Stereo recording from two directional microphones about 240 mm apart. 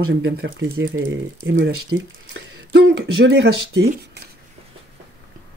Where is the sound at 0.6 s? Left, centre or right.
Right.